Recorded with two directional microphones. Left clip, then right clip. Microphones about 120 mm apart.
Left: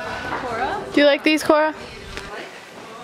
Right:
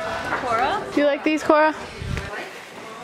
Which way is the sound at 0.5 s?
10° right (ahead or behind).